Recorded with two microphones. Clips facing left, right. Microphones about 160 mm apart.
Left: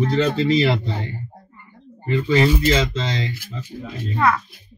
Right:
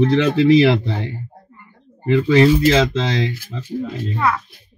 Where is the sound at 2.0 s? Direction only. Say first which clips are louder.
Right 5 dB; 80° right.